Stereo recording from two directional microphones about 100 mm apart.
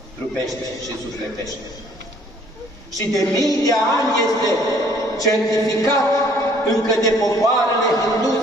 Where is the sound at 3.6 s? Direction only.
35° left (ahead or behind).